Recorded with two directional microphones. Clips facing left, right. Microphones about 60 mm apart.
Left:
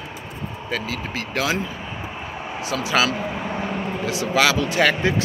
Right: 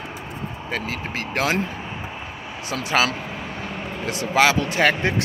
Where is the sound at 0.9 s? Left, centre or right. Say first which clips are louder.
Even; right.